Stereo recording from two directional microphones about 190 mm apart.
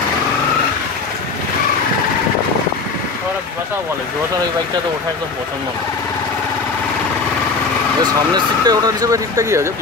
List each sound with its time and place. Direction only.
8.6 s speech: 20° right (ahead or behind)